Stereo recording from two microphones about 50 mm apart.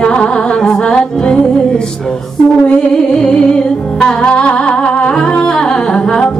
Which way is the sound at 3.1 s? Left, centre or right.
Centre.